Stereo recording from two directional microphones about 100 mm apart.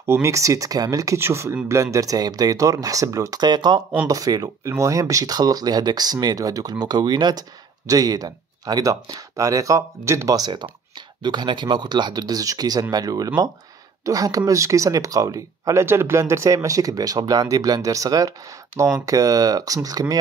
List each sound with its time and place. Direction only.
0.0 s speech: 30° right (ahead or behind)
11.2 s speech: 50° right (ahead or behind)